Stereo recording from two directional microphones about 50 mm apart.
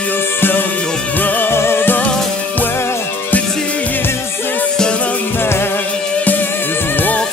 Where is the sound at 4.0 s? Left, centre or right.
Left.